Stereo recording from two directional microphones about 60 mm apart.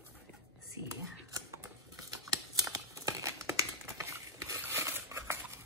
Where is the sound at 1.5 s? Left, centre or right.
Right.